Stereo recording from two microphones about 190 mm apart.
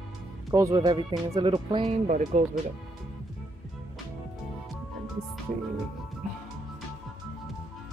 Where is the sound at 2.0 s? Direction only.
40° right (ahead or behind).